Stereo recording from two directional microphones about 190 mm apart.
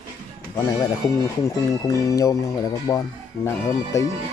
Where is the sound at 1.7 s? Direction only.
15° left (ahead or behind).